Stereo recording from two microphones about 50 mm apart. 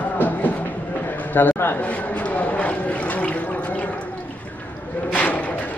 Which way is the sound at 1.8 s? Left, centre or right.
Left.